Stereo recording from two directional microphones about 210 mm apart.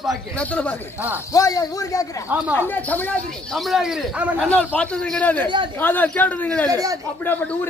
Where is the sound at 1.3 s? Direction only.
15° left (ahead or behind).